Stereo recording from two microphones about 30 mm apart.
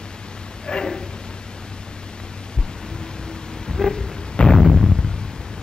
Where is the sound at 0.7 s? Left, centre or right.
Left.